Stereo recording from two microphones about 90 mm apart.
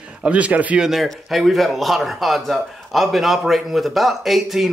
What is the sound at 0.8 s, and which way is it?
Speech, centre (ahead or behind).